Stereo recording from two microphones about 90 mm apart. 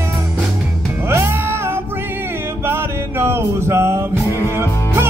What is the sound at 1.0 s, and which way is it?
Music, 30° right (ahead or behind).